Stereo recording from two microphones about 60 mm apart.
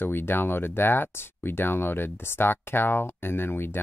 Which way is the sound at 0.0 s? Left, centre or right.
Left.